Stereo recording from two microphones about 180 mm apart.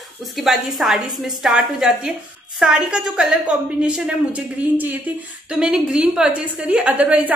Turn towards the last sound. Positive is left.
turn(degrees=-5)  # may be behind; listen again after turning